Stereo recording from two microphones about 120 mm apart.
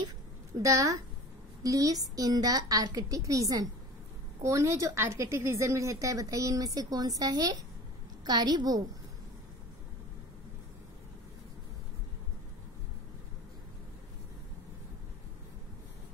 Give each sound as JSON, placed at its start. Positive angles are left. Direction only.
{"t": 0.6, "sound": "a woman's voice", "side_deg": -25}